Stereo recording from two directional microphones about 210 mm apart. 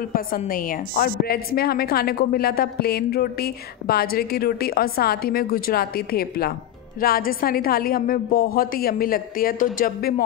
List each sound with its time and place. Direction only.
0.4 s a woman's voice: 40° left (ahead or behind)